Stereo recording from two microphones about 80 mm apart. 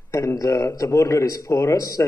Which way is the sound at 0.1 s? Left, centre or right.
Left.